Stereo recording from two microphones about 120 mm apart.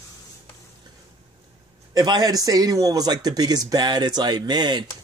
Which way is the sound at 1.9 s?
35° right (ahead or behind).